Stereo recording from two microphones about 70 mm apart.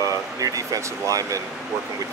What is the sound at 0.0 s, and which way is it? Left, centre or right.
Speech, right.